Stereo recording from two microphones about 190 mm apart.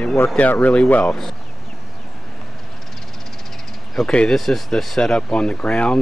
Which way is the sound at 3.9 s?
5° left (ahead or behind).